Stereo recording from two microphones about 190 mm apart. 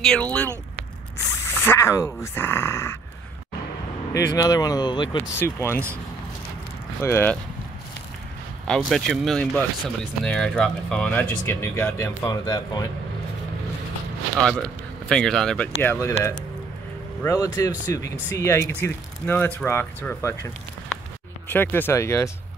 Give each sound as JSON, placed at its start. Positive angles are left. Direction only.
{"t": 0.0, "sound": "speech", "side_deg": 5}
{"t": 4.1, "sound": "speech", "side_deg": 20}
{"t": 5.4, "sound": "speech", "side_deg": 15}
{"t": 7.0, "sound": "speech", "side_deg": 10}
{"t": 8.6, "sound": "speech", "side_deg": 0}
{"t": 14.3, "sound": "speech", "side_deg": -5}
{"t": 17.2, "sound": "speech", "side_deg": 15}